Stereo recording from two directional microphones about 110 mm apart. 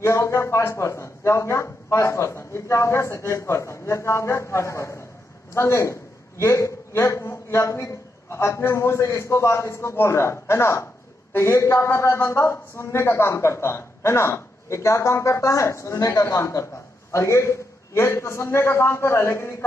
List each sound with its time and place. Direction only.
0.0 s a man's voice: 25° left (ahead or behind)